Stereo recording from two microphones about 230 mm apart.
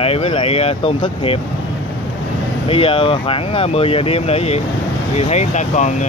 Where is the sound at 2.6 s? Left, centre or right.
Left.